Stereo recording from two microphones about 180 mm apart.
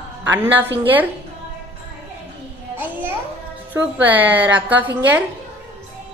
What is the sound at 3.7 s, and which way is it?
A woman's voice, 10° right (ahead or behind).